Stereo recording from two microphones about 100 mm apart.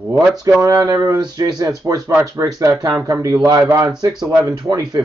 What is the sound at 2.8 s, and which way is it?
Speech, 35° right (ahead or behind).